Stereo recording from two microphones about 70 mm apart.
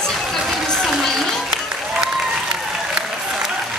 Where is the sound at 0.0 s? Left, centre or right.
Centre.